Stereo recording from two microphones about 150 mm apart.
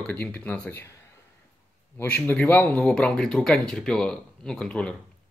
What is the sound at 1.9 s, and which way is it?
Speech, 10° left (ahead or behind).